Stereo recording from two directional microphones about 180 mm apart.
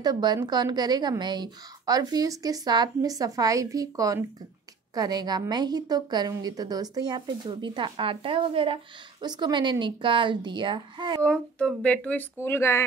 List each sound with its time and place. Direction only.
0.0 s a woman's voice: 25° right (ahead or behind)
11.2 s speech: 5° left (ahead or behind)